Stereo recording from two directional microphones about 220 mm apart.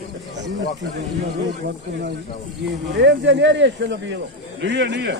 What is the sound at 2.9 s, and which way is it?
Speech, 55° right (ahead or behind).